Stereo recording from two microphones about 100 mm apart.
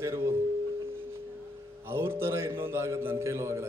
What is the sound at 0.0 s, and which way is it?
Tuning fork, 30° right (ahead or behind).